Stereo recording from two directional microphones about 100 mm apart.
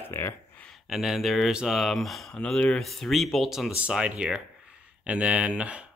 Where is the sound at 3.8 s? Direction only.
10° right (ahead or behind).